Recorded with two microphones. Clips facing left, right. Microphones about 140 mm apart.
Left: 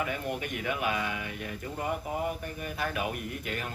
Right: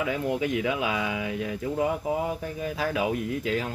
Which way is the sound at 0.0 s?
90° right.